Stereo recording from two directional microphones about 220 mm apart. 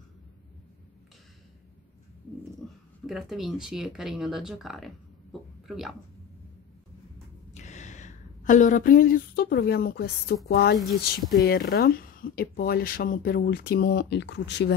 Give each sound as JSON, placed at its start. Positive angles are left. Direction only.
{"t": 3.1, "sound": "speech", "side_deg": 0}
{"t": 7.5, "sound": "speech", "side_deg": 30}